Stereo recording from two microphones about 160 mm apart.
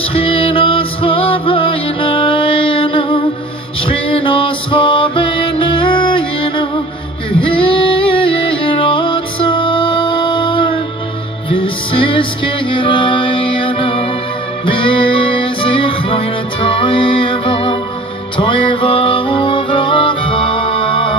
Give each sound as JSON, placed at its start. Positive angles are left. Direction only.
{"t": 0.1, "sound": "music", "side_deg": 35}